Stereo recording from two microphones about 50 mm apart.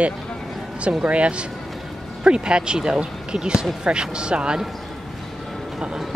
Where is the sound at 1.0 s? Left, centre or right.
Right.